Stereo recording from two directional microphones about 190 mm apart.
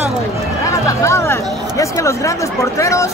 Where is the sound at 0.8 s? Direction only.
15° left (ahead or behind).